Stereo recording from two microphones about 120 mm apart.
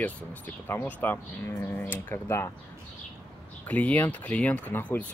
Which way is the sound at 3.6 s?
15° left (ahead or behind).